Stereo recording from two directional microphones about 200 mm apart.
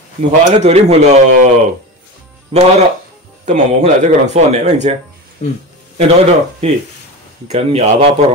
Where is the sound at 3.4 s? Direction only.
35° right (ahead or behind).